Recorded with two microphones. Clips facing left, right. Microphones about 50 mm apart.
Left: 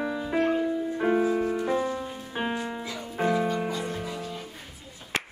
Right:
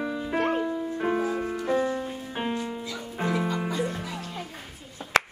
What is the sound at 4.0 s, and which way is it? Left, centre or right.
Music, right.